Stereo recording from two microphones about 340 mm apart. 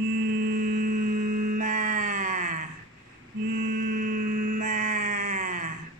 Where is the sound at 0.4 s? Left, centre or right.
Right.